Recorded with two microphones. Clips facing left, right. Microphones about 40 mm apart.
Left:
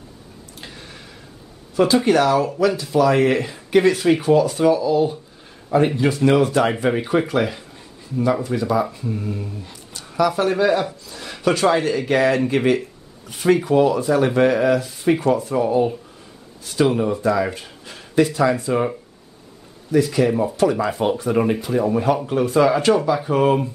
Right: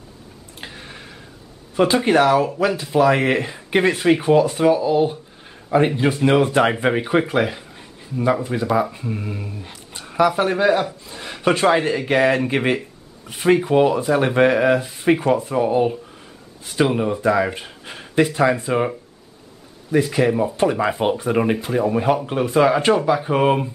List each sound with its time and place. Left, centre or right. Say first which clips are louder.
0.6 s a sound: right 3 dB; right
2.0 s a man's voice: right 1 dB; right
19.9 s speech: left 1 dB; right
20.2 s a man's voice: right 1 dB; centre
21.0 s speech: left 1 dB; right